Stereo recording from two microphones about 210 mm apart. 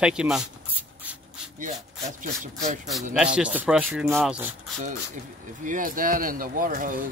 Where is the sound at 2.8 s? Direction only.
Centre (ahead or behind).